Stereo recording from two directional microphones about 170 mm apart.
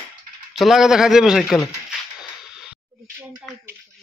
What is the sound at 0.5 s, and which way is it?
A man's voice, centre (ahead or behind).